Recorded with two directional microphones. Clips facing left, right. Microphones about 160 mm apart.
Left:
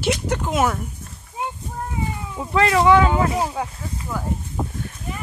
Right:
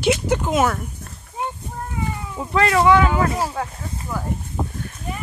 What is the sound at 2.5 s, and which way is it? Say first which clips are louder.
Speech: even; 20° left (ahead or behind).